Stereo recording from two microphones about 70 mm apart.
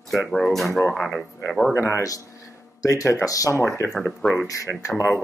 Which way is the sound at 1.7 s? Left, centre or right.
Left.